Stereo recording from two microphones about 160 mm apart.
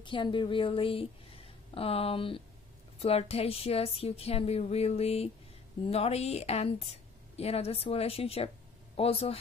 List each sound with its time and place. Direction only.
0.0 s a woman's voice: 30° left (ahead or behind)